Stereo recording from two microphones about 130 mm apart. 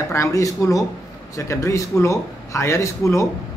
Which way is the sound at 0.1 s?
25° left (ahead or behind).